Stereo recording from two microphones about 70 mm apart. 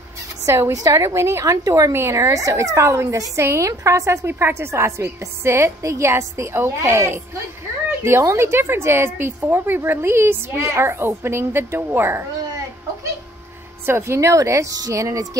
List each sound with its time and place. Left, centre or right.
0.5 s a woman's voice: right
13.8 s a woman's voice: right